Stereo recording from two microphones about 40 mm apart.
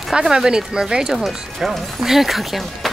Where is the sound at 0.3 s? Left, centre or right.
Centre.